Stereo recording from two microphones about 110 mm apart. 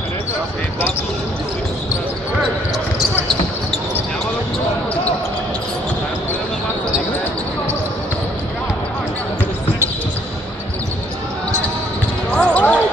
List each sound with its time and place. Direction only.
12.3 s basketball bounce: 10° left (ahead or behind)